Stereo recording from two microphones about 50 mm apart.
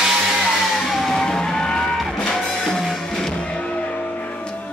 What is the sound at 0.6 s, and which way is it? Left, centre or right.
Vehicle, centre.